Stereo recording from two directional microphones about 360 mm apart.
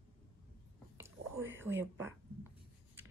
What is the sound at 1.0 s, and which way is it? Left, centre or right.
Whispering, centre.